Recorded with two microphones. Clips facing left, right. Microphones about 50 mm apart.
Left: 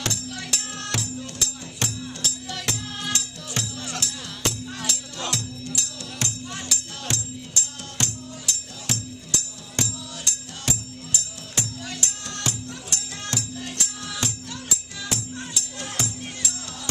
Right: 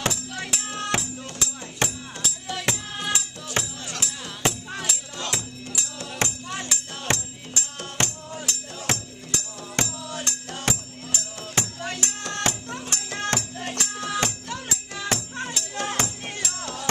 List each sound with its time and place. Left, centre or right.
0.0 s music: centre; by 16.9 s right